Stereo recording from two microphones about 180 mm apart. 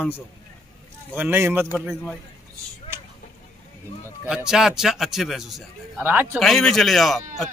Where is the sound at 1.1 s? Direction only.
10° right (ahead or behind).